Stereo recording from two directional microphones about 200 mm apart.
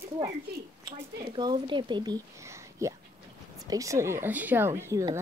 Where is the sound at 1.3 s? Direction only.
25° right (ahead or behind).